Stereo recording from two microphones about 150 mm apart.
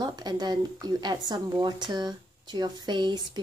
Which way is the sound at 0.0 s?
25° right (ahead or behind).